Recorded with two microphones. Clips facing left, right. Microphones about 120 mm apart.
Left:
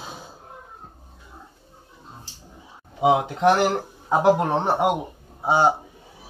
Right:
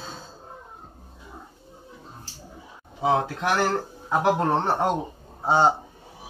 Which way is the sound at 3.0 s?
20° left (ahead or behind).